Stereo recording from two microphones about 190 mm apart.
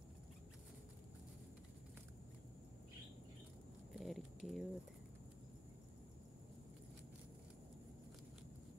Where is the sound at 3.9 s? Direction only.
Centre (ahead or behind).